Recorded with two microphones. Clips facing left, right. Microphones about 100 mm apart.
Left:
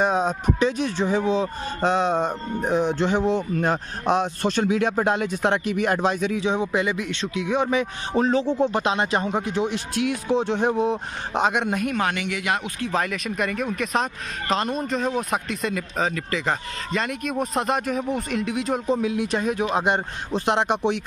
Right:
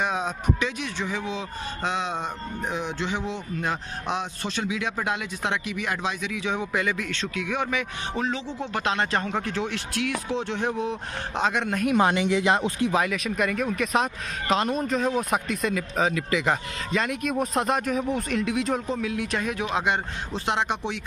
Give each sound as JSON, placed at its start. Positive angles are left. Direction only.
{"t": 0.0, "sound": "speech", "side_deg": 35}
{"t": 6.4, "sound": "speech", "side_deg": 25}
{"t": 8.5, "sound": "speech", "side_deg": 20}
{"t": 12.0, "sound": "speech", "side_deg": -25}
{"t": 12.9, "sound": "speech", "side_deg": -5}
{"t": 18.9, "sound": "speech", "side_deg": 20}
{"t": 19.2, "sound": "speech", "side_deg": 30}